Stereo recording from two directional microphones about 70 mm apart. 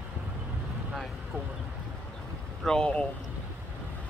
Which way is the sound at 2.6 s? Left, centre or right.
Centre.